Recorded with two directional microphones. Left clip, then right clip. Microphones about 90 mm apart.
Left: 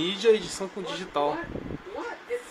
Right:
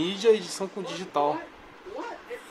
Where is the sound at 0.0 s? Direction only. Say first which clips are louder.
Even; 25° right (ahead or behind).